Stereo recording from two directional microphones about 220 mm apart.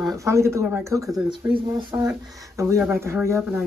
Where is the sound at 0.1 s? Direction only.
15° right (ahead or behind).